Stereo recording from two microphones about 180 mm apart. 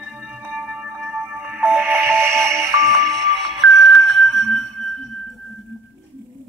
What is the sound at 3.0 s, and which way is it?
Music, centre (ahead or behind).